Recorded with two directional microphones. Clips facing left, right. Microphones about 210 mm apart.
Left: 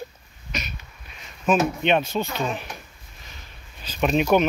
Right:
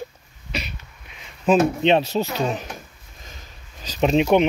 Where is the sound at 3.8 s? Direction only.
30° right (ahead or behind).